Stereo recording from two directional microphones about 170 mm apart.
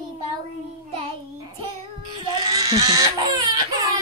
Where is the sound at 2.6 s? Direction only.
20° right (ahead or behind).